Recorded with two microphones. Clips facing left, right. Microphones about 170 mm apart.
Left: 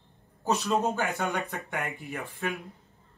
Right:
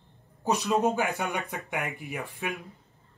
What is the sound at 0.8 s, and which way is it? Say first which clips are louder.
Speech: right 2 dB; 15° right (ahead or behind).